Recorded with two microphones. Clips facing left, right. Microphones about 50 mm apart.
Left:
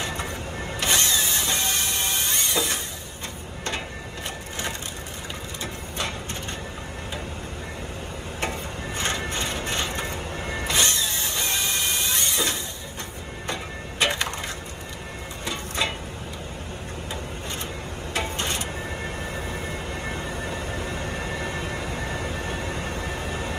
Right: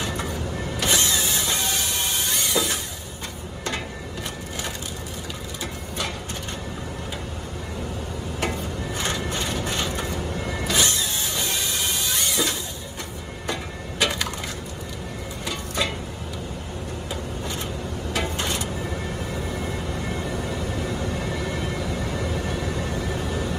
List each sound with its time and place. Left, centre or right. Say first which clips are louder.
0.0 s vehicle: right 2 dB; left
1.2 s music: right 1 dB; left
5.6 s mechanisms: right 1 dB; left
8.9 s train: even; left
11.1 s music: even; left
13.5 s a sound: right 2 dB; left
15.4 s a sound: even; left
18.4 s printer: right 1 dB; left
19.3 s vehicle: right 2 dB; left